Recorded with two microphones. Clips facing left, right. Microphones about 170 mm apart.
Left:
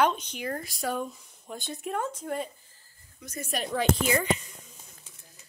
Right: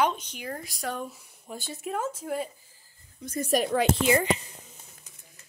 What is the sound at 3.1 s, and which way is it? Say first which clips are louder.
A woman's voice: right 8 dB; 30° right (ahead or behind).